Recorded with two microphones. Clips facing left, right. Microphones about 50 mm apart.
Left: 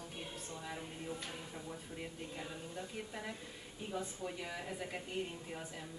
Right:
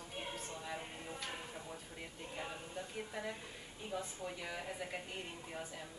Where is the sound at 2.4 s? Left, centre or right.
Right.